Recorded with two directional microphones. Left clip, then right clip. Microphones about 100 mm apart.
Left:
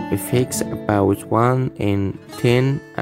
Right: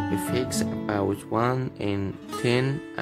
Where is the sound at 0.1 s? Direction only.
65° left (ahead or behind).